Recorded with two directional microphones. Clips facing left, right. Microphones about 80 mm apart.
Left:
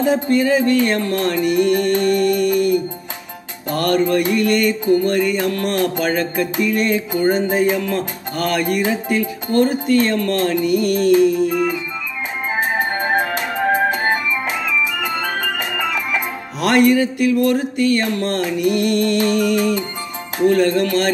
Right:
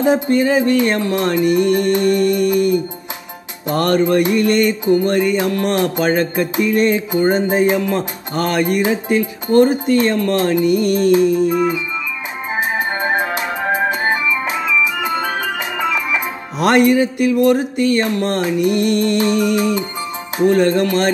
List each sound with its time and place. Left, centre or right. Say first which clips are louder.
0.0 s music: right 2 dB; right